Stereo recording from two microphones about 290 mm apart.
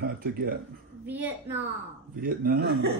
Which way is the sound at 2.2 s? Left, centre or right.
Right.